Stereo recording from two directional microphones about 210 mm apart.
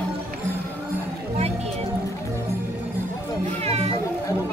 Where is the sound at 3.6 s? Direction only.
30° right (ahead or behind).